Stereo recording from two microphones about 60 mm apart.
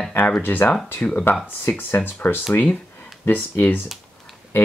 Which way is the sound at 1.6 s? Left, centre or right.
Left.